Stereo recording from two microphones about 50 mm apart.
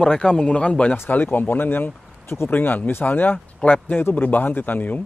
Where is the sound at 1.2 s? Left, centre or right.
Left.